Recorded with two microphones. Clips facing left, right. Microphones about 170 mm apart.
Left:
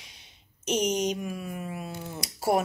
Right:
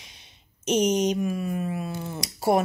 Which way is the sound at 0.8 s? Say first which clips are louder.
Right 4 dB; 55° right (ahead or behind).